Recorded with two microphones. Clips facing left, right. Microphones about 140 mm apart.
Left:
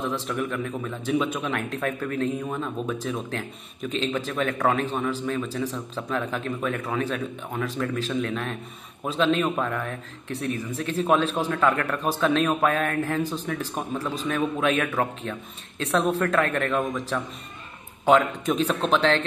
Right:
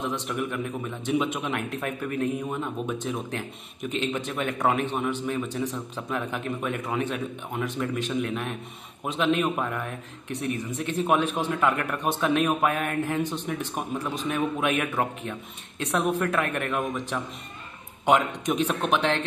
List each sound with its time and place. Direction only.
0.3 s speech: 15° right (ahead or behind)